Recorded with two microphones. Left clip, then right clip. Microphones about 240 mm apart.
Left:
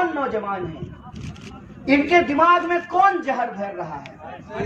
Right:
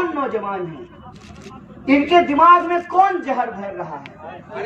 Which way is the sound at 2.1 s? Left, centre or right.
Left.